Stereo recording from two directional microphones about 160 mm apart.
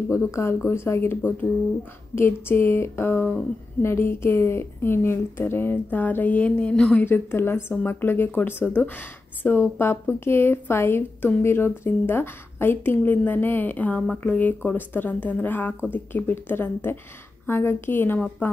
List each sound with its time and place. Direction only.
0.1 s speech: 15° left (ahead or behind)
7.1 s speech: 15° left (ahead or behind)